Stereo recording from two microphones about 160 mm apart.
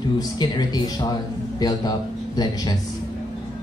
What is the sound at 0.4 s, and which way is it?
Speech, 25° left (ahead or behind).